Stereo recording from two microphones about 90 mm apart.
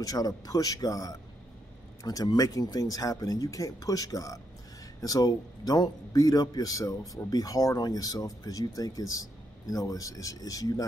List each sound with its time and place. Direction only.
0.0 s speech: 45° left (ahead or behind)